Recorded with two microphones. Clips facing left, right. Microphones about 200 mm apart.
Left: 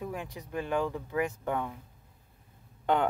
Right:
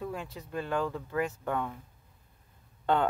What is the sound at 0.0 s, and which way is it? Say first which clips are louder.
Speech: even; 15° left (ahead or behind).